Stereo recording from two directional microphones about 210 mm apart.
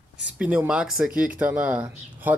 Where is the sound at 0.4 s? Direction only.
5° right (ahead or behind).